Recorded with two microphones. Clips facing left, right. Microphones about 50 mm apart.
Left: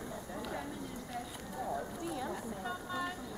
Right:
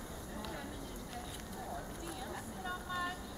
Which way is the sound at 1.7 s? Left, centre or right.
Centre.